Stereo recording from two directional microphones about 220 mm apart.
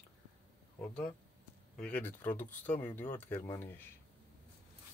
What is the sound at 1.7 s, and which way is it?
Speech, 5° left (ahead or behind).